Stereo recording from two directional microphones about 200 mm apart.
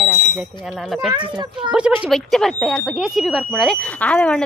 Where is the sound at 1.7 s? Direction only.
5° right (ahead or behind).